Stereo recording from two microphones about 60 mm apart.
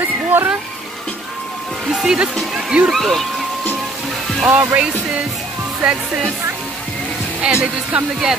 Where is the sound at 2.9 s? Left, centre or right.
Centre.